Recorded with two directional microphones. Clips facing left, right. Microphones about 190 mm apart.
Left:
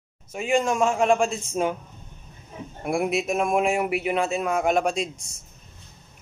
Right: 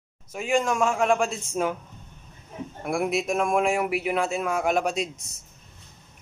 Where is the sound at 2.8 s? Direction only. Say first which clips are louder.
Left 1 dB; centre (ahead or behind).